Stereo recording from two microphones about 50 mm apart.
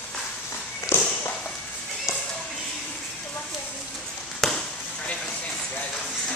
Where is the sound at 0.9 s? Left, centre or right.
Left.